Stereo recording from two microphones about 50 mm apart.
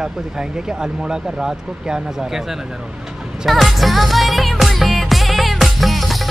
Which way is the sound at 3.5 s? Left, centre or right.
Centre.